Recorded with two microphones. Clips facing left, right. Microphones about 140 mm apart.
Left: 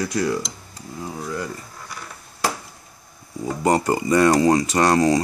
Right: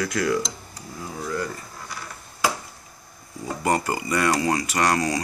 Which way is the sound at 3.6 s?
25° left (ahead or behind).